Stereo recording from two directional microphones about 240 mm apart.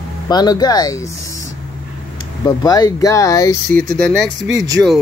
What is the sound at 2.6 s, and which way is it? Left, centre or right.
Speech, centre.